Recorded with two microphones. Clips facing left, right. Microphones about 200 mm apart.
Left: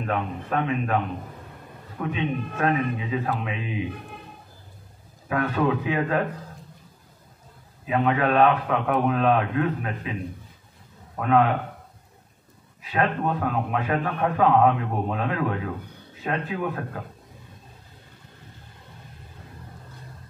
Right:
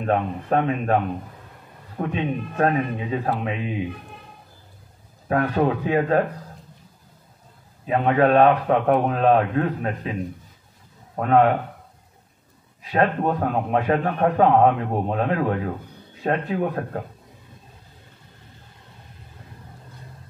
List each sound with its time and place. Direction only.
0.0 s a man's voice: 40° right (ahead or behind)
2.0 s a man's voice: 35° right (ahead or behind)
5.3 s a man's voice: 40° right (ahead or behind)
7.8 s a man's voice: 40° right (ahead or behind)
11.1 s a man's voice: 40° right (ahead or behind)
12.9 s a man's voice: 35° right (ahead or behind)